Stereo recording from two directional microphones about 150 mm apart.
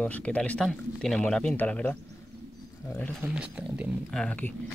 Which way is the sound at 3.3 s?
5° right (ahead or behind).